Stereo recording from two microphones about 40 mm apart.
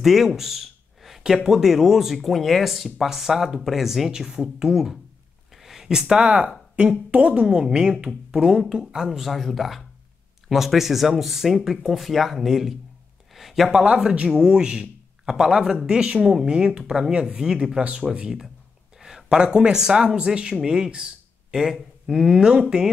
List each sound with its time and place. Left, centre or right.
0.0 s speech: centre
5.6 s a sound: centre
5.9 s speech: centre
6.2 s a woman's voice: right
7.4 s speech: centre
13.3 s a sound: centre
13.7 s speech: right
22.0 s speech: centre